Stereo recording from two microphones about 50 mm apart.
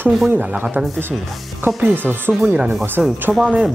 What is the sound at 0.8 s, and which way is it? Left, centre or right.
Speech, right.